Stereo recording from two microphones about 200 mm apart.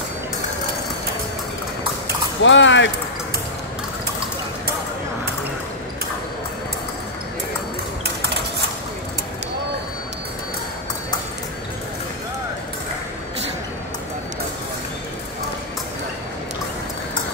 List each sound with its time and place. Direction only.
2.4 s speech: 65° left (ahead or behind)